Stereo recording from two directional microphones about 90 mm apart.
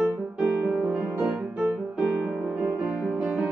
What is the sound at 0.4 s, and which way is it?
Music, 5° right (ahead or behind).